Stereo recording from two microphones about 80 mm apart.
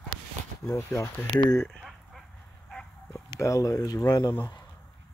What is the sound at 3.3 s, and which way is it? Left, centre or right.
Speech, left.